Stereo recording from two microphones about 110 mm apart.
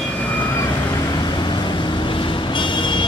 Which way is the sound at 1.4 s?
45° left (ahead or behind).